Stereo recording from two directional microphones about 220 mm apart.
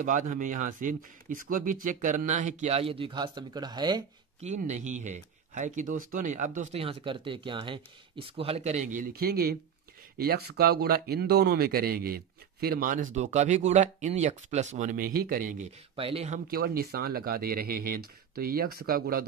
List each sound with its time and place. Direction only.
0.0 s speech: 35° right (ahead or behind); by 4.0 s 20° right (ahead or behind)
4.4 s speech: 30° right (ahead or behind)
16.0 s speech: 25° right (ahead or behind)
16.4 s speech: 45° right (ahead or behind)